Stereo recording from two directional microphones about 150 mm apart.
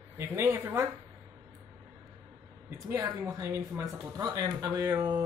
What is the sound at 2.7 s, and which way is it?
Speech, 15° right (ahead or behind).